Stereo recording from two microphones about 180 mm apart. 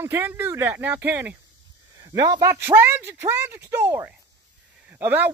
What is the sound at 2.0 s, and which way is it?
Speech, 20° right (ahead or behind).